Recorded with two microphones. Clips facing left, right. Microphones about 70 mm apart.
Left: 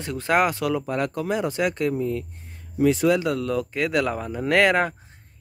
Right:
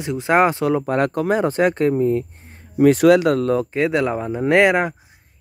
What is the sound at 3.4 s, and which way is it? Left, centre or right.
Speech, right.